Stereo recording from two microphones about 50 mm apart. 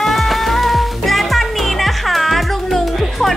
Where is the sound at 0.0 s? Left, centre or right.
Centre.